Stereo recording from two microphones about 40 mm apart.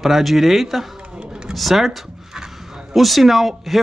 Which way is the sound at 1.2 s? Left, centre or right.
Right.